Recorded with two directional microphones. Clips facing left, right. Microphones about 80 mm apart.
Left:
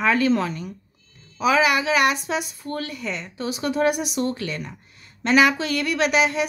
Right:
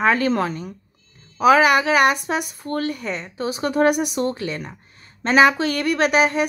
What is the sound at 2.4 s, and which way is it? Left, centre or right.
Speech, right.